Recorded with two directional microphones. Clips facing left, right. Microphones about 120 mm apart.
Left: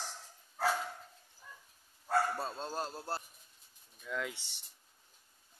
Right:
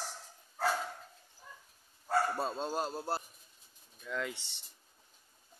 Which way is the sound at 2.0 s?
5° right (ahead or behind).